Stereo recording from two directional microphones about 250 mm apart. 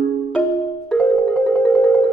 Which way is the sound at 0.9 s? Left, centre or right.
Centre.